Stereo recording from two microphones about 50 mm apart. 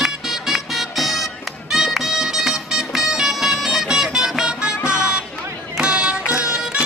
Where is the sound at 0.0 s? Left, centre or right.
Centre.